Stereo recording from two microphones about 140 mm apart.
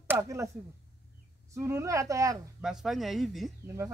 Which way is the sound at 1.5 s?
20° right (ahead or behind).